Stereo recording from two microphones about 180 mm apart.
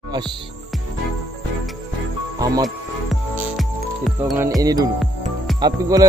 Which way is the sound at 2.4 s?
20° right (ahead or behind).